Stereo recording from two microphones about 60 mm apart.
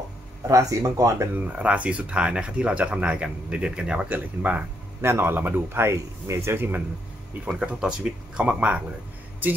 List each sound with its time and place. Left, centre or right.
0.5 s speech: right
1.5 s speech: right
5.0 s speech: right
6.5 s speech: right
7.4 s speech: centre